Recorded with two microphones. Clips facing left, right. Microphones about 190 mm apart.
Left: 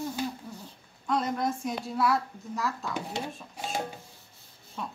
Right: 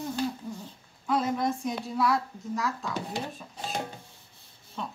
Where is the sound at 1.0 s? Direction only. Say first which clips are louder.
Right 1 dB; centre (ahead or behind).